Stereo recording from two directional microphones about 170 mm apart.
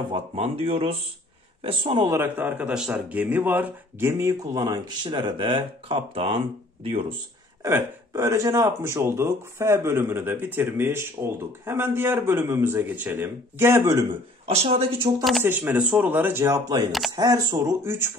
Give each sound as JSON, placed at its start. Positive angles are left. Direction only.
{"t": 0.0, "sound": "speech", "side_deg": -30}
{"t": 2.1, "sound": "a man's voice", "side_deg": -10}
{"t": 7.6, "sound": "speech", "side_deg": -15}
{"t": 14.4, "sound": "speech", "side_deg": -35}
{"t": 15.4, "sound": "a man's voice", "side_deg": -10}